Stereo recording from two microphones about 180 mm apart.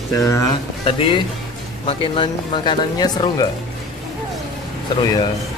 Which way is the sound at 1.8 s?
30° left (ahead or behind).